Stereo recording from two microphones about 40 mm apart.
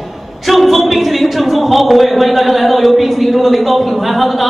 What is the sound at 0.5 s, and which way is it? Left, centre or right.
A man's voice, centre.